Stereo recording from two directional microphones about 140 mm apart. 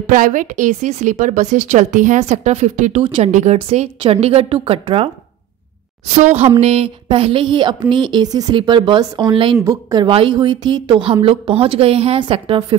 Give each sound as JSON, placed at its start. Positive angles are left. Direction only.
{"t": 0.1, "sound": "a woman's voice", "side_deg": -70}
{"t": 6.0, "sound": "speech", "side_deg": -60}
{"t": 9.7, "sound": "a woman's voice", "side_deg": -25}
{"t": 10.0, "sound": "speech", "side_deg": -40}